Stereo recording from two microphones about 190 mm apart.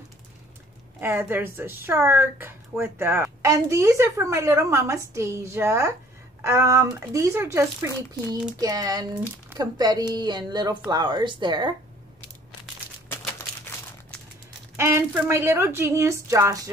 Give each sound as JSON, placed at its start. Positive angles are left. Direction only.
{"t": 1.0, "sound": "speech", "side_deg": -10}
{"t": 14.8, "sound": "speech", "side_deg": -15}